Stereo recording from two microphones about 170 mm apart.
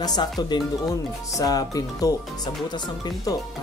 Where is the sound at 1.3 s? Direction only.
20° left (ahead or behind).